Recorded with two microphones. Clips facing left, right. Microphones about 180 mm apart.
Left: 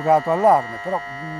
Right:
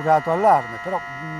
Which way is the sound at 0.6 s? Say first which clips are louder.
Left 1 dB; 30° left (ahead or behind).